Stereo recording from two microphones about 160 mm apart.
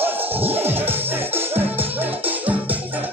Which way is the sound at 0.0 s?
10° right (ahead or behind).